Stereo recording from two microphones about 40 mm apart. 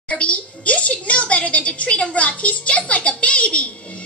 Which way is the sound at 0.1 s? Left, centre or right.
Left.